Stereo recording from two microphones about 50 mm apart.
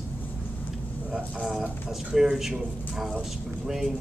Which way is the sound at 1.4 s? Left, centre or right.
Centre.